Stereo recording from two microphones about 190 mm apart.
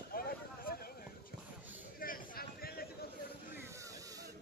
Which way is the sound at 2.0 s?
50° left (ahead or behind).